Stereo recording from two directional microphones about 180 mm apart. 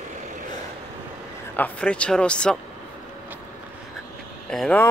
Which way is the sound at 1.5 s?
10° left (ahead or behind).